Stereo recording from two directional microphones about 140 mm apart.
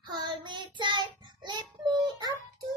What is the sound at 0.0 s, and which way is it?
Child singing, 30° right (ahead or behind).